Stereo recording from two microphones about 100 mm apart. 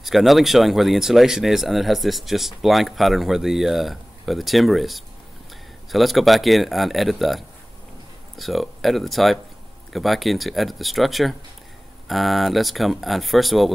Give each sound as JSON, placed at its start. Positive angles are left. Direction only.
{"t": 0.0, "sound": "speech", "side_deg": 0}